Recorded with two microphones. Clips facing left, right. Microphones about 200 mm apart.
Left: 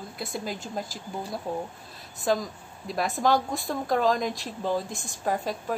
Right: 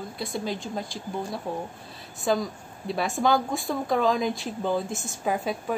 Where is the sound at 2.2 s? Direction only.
Centre (ahead or behind).